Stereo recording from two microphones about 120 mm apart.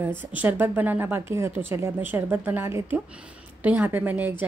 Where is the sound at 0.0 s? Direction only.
15° right (ahead or behind).